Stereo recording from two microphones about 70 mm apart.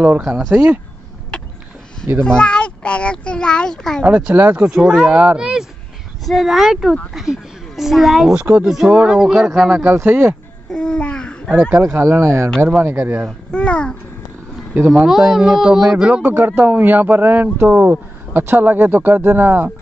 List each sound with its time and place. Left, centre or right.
0.0 s speech: right
0.4 s speech: centre
1.3 s a sound: centre
2.2 s a child's voice: centre
4.0 s speech: centre
4.8 s speech: centre
8.4 s speech: right
8.6 s speech: centre
10.0 s speech: right
10.7 s babbling: centre
11.8 s speech: right
12.8 s speech: right
13.5 s a child's voice: centre
14.9 s speech: centre; by 19.7 s right